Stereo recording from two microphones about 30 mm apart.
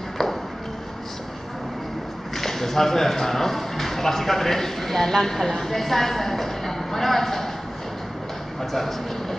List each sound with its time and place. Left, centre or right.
0.2 s ping: centre
2.3 s a woman's voice: centre